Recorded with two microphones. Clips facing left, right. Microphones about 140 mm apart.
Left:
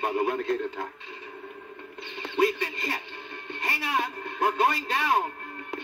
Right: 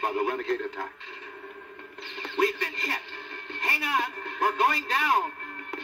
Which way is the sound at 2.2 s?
20° left (ahead or behind).